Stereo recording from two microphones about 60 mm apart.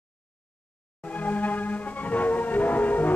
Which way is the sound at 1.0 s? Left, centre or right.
Left.